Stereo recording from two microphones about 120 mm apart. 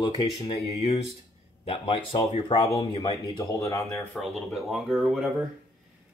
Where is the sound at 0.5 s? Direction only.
65° left (ahead or behind).